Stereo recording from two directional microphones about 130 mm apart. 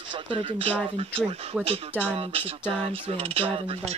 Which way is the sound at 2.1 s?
50° right (ahead or behind).